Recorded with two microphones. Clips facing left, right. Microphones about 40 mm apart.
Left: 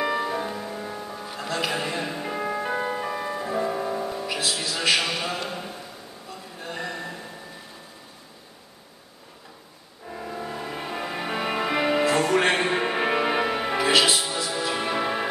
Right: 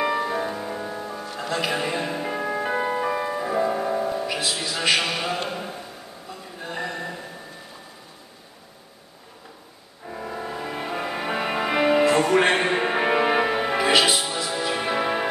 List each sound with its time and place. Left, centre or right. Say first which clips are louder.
0.0 s music: right 2 dB; centre
1.2 s music: right 1 dB; centre
5.5 s a sound: right 2 dB; centre
6.6 s mantra: right 2 dB; centre
10.0 s music: right 2 dB; centre